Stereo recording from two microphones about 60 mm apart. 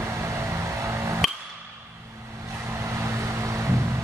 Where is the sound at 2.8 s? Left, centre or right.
Right.